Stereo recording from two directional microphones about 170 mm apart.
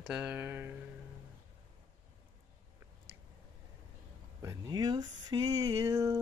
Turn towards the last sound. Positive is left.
turn(degrees=-15)  # may be behind; listen again after turning